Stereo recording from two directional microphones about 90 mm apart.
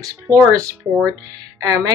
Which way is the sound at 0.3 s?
35° right (ahead or behind).